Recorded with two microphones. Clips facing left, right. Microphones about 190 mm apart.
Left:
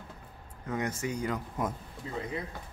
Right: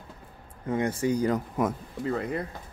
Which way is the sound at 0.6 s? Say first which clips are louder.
Right 7 dB; 30° right (ahead or behind).